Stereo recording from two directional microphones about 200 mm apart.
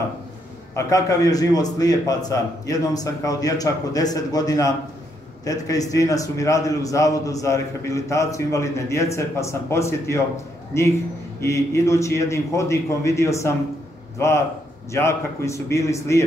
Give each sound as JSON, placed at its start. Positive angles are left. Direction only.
{"t": 0.7, "sound": "a man's voice", "side_deg": 15}